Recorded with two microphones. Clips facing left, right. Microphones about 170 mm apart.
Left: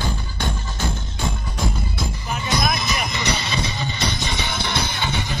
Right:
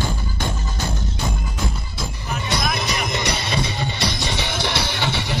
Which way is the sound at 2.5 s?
65° right (ahead or behind).